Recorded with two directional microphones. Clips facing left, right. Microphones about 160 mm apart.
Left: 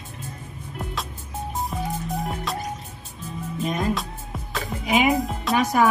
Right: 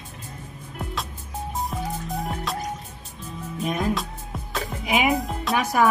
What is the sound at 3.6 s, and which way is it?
Speech, centre (ahead or behind).